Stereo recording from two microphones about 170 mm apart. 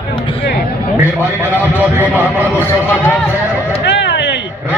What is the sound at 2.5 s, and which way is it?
Speech, 10° left (ahead or behind).